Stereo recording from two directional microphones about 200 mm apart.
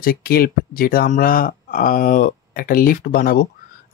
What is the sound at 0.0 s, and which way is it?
Speech, 50° left (ahead or behind).